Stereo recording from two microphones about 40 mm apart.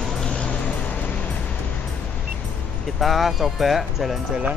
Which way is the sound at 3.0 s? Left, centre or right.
Centre.